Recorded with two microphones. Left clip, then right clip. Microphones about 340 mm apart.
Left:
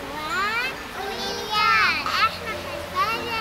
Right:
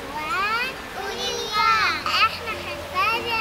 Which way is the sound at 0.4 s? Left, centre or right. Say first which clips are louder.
Even; centre.